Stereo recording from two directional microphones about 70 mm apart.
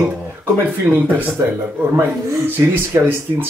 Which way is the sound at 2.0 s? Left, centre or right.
Right.